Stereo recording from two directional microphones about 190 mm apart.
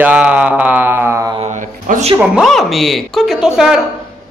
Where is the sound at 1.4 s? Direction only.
40° right (ahead or behind).